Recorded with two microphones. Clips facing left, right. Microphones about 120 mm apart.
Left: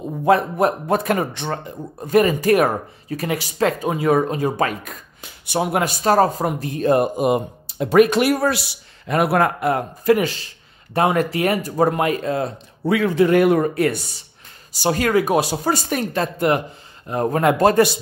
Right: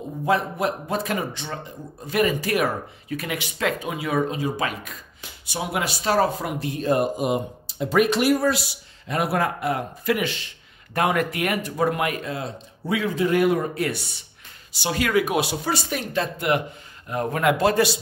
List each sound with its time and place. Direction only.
0.2 s a man's voice: 50° left (ahead or behind)
2.1 s speech: 45° left (ahead or behind)
12.8 s a man's voice: 65° left (ahead or behind)